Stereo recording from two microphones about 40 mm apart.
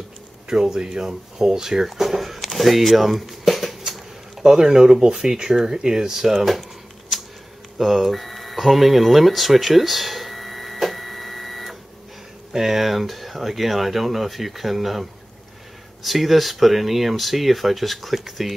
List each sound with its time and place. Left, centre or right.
0.5 s speech: centre
3.9 s a sound: centre
4.6 s speech: centre
6.3 s speech: centre
7.1 s a sound: centre
12.5 s speech: centre